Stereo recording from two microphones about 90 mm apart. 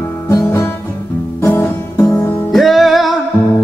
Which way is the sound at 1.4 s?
25° left (ahead or behind).